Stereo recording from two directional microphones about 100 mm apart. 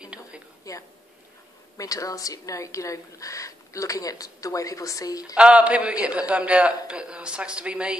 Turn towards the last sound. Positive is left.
turn(degrees=-10)  # may be behind; listen again after turning